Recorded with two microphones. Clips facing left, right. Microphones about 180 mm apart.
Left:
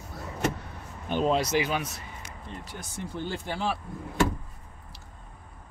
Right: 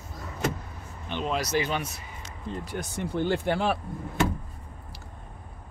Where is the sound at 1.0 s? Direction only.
40° left (ahead or behind).